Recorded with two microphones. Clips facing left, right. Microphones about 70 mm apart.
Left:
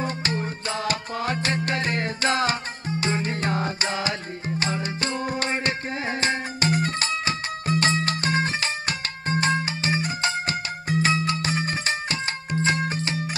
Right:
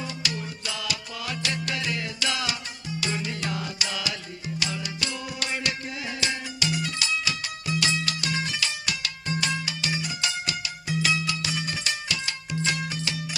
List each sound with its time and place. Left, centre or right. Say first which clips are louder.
0.0 s music: left 6 dB; left